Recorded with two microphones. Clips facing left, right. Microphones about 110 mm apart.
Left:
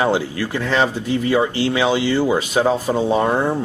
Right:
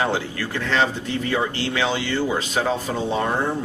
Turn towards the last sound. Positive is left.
turn(degrees=15)  # may be behind; listen again after turning